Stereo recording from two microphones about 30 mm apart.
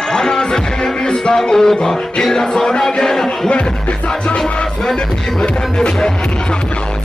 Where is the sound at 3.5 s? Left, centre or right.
Left.